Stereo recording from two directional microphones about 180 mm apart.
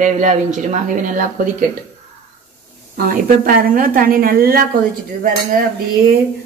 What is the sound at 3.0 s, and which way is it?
A woman's voice, 50° right (ahead or behind).